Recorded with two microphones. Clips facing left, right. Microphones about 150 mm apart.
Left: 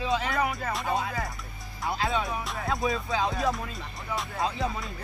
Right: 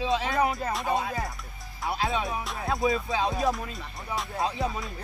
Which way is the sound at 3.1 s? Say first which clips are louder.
Right 1 dB; 20° right (ahead or behind).